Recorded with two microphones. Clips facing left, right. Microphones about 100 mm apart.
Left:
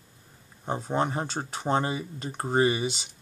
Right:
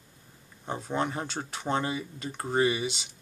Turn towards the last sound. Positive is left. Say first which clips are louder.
# left 2 dB
turn(degrees=35)  # may be behind; listen again after turning